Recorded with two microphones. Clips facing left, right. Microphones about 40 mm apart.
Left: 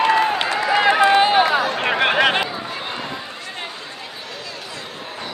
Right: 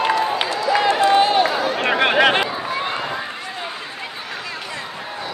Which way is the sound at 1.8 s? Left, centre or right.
Centre.